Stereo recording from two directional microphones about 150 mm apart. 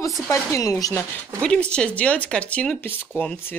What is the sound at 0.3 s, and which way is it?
Speech, 20° left (ahead or behind).